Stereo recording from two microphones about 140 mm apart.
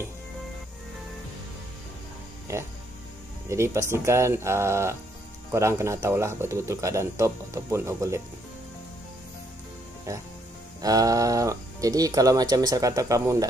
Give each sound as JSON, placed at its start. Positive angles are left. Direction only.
{"t": 3.4, "sound": "speech", "side_deg": -20}
{"t": 10.1, "sound": "speech", "side_deg": -20}